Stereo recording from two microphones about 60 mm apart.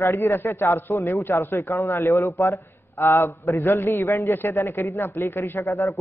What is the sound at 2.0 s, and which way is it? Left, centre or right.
Speech, left.